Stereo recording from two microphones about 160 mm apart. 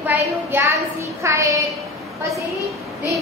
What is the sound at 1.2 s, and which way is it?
Child singing, 20° right (ahead or behind).